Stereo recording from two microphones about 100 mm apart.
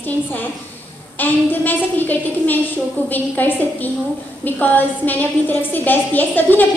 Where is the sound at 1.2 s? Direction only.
20° left (ahead or behind).